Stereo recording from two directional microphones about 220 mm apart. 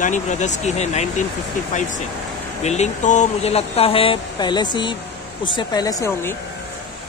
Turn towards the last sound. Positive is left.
turn(degrees=15)  # may be behind; listen again after turning